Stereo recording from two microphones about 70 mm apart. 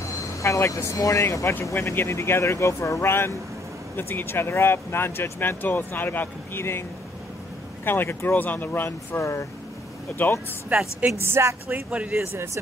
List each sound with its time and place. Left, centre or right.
0.2 s vehicle: left
0.8 s speech: left
1.4 s speech: left
7.8 s speech: left
10.1 s speech: left
10.7 s speech: right
11.1 s a woman's voice: right
11.7 s speech: centre